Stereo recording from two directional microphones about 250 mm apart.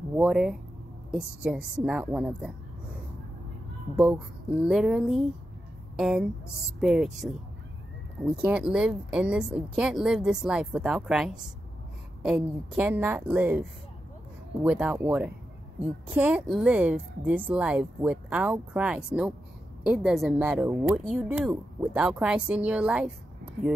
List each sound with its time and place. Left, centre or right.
0.2 s a woman's voice: centre
3.9 s a woman's voice: centre
8.4 s a woman's voice: centre